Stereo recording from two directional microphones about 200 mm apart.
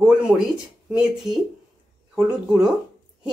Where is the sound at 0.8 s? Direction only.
5° right (ahead or behind).